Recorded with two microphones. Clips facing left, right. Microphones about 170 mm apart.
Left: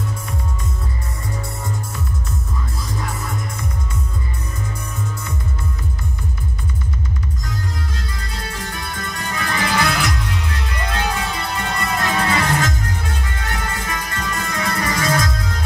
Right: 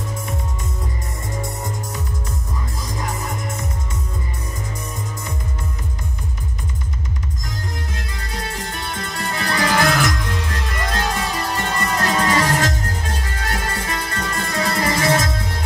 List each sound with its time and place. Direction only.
3.1 s music: 15° right (ahead or behind)
8.3 s music: 20° right (ahead or behind)